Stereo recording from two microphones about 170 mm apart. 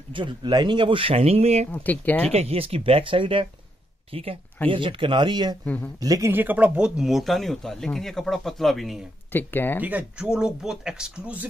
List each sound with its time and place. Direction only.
0.1 s speech: 30° right (ahead or behind)
1.7 s speech: 10° left (ahead or behind)
2.3 s speech: 35° right (ahead or behind); by 9.0 s centre (ahead or behind)
9.3 s speech: 10° left (ahead or behind)
9.8 s speech: 10° right (ahead or behind)